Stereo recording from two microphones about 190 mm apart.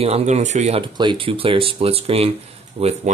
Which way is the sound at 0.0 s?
35° right (ahead or behind).